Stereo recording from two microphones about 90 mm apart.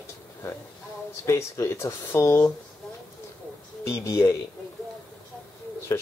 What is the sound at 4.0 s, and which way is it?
Speech, 40° left (ahead or behind).